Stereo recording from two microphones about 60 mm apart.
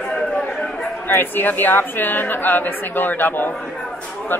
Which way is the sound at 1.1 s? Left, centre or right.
Left.